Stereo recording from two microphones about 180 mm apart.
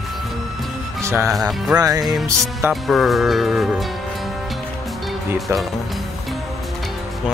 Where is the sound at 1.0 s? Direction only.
15° right (ahead or behind).